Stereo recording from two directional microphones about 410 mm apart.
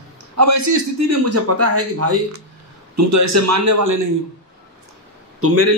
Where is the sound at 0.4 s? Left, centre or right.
Right.